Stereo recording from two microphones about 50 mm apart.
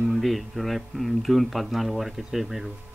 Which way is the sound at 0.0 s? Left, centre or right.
Centre.